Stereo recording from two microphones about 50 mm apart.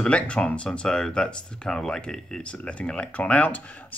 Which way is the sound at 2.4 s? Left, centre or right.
Left.